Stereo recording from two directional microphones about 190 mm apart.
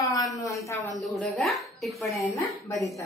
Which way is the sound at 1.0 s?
Centre (ahead or behind).